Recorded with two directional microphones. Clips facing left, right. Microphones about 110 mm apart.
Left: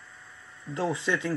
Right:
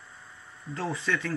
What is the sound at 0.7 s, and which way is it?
Speech, 20° left (ahead or behind).